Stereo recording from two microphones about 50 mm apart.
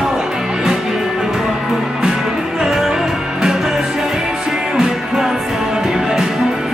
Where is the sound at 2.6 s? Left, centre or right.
Centre.